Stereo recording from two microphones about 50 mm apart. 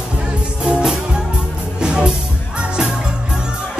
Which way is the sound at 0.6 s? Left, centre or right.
Centre.